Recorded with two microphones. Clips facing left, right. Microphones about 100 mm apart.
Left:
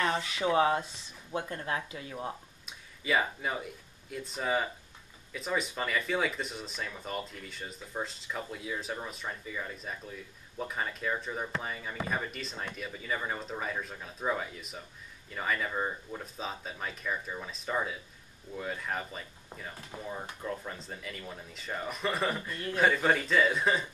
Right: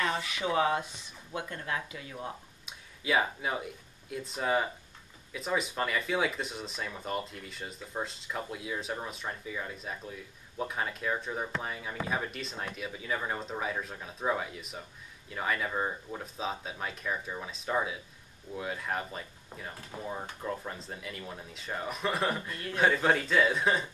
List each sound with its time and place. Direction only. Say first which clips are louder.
0.2 s speech: left 2 dB; 25° left (ahead or behind)
2.6 s speech: right 3 dB; centre (ahead or behind)